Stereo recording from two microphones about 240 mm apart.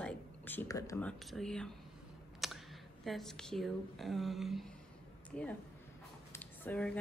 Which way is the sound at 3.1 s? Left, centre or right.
Centre.